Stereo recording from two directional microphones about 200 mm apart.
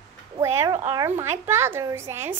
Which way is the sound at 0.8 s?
15° right (ahead or behind).